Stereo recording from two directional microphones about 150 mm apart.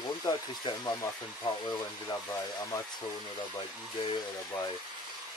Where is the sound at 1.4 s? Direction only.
25° left (ahead or behind).